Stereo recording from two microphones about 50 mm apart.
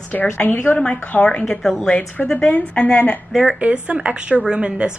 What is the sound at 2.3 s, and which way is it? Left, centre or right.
Speech, left.